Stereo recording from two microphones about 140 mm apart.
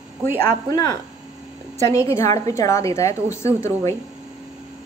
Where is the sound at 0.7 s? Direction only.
20° left (ahead or behind).